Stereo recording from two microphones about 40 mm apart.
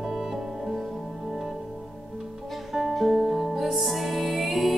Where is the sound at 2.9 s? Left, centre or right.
Centre.